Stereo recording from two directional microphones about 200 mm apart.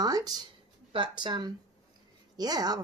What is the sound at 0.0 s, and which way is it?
A woman's voice, 20° right (ahead or behind).